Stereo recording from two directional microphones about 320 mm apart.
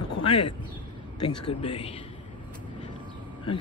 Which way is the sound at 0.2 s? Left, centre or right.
Centre.